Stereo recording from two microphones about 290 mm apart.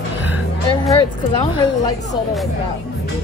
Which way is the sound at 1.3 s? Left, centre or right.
Centre.